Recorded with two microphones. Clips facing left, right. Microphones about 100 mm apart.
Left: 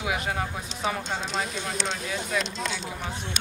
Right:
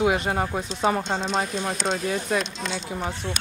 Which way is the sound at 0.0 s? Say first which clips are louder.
Right 6 dB; 40° right (ahead or behind).